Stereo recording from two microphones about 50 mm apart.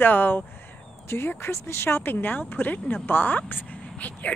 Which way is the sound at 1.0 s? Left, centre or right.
Left.